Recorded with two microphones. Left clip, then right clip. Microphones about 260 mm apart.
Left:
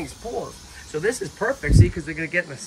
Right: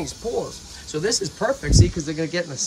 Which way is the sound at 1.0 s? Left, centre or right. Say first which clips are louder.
Right 1 dB; centre.